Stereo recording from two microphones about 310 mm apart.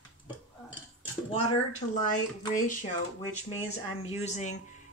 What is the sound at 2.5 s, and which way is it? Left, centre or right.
Speech, left.